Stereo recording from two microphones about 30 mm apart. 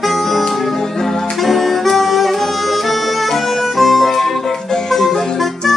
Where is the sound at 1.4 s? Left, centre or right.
Centre.